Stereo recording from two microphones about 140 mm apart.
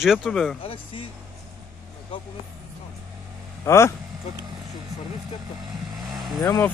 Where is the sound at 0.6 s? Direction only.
40° left (ahead or behind).